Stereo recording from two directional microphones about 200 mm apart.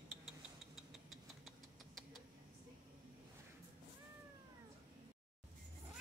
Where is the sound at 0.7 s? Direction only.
Centre (ahead or behind).